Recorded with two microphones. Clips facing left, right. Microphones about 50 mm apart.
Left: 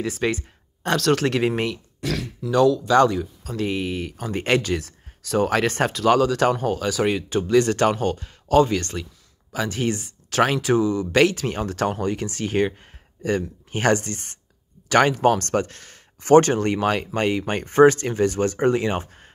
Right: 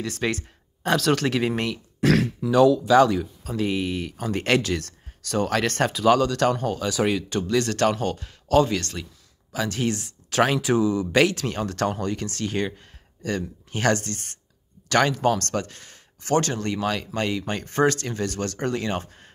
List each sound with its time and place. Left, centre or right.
0.0 s speech: centre
2.0 s speech: right
2.4 s speech: centre
19.0 s a sound: centre